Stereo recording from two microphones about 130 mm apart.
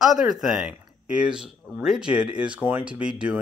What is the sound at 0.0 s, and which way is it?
Speech, 5° right (ahead or behind).